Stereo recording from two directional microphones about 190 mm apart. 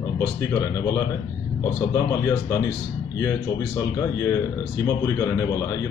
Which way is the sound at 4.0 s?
20° left (ahead or behind).